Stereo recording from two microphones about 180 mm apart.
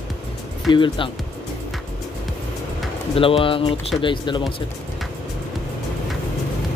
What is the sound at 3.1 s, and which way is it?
Speech, 30° left (ahead or behind).